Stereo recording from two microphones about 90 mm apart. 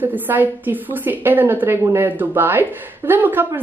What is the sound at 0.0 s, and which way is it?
A woman's voice, 20° right (ahead or behind).